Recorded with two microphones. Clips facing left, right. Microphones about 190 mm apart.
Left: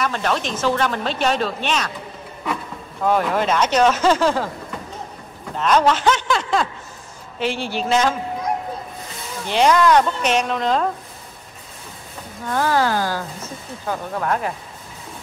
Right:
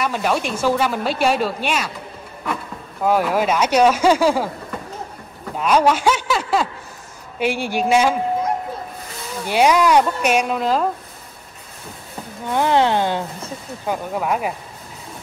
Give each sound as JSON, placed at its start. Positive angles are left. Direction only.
{"t": 0.0, "sound": "speech", "side_deg": -10}
{"t": 3.0, "sound": "speech", "side_deg": -5}
{"t": 5.6, "sound": "speech", "side_deg": -10}
{"t": 9.5, "sound": "speech", "side_deg": -10}
{"t": 12.4, "sound": "speech", "side_deg": -20}
{"t": 14.1, "sound": "speech", "side_deg": -10}